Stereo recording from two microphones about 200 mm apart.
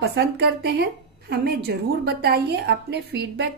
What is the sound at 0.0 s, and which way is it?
A woman's voice, 55° right (ahead or behind).